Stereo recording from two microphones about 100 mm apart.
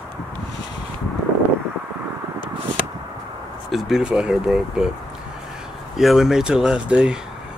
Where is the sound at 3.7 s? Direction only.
Centre (ahead or behind).